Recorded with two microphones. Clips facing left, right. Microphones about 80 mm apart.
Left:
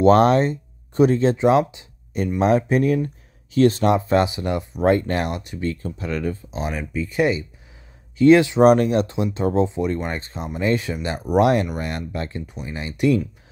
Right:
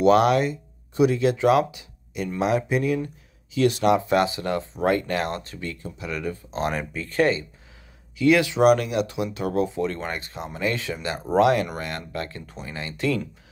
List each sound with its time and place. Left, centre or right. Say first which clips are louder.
0.0 s speech: left 3 dB; left
2.1 s speech: left 5 dB; left; by 5.6 s centre
5.6 s speech: left 7 dB; left
6.6 s speech: even; centre
8.2 s speech: left 5 dB; left